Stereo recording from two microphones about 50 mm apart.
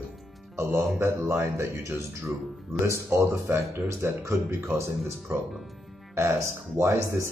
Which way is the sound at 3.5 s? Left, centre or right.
Right.